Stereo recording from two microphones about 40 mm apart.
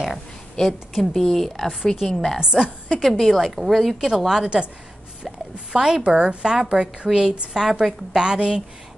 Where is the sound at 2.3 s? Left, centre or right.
Centre.